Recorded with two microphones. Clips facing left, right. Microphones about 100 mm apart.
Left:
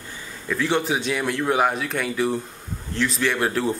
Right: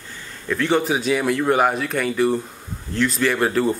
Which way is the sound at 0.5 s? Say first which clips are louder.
Right 3 dB; centre (ahead or behind).